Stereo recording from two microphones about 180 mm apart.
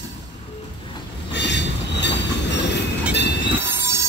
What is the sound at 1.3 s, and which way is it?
Train, 75° left (ahead or behind).